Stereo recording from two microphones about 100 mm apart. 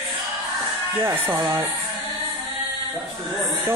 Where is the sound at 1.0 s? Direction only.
25° right (ahead or behind).